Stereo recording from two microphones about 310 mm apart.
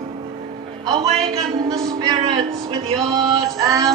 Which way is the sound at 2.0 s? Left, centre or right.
Centre.